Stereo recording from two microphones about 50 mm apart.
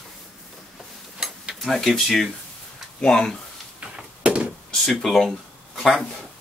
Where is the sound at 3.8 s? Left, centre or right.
Right.